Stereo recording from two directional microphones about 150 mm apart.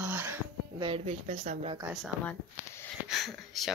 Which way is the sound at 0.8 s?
40° right (ahead or behind).